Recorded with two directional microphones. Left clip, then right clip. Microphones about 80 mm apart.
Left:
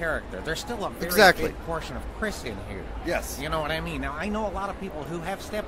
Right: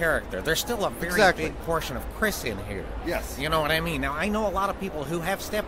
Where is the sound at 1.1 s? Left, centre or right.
Left.